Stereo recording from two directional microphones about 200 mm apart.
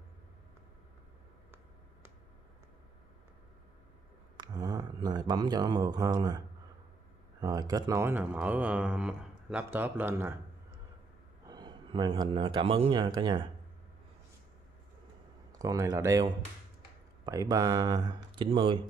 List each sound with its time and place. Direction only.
4.4 s speech: 20° right (ahead or behind)
11.4 s speech: 20° right (ahead or behind)
15.6 s speech: 15° right (ahead or behind)